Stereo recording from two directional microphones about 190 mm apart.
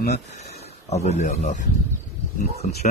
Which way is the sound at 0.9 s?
35° left (ahead or behind).